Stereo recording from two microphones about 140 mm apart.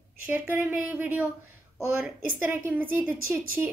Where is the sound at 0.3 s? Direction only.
15° right (ahead or behind).